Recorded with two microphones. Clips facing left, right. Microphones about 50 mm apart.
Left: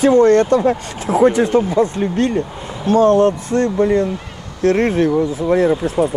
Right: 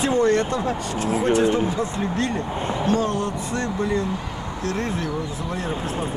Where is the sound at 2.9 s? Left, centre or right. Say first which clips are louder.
Left 13 dB; left.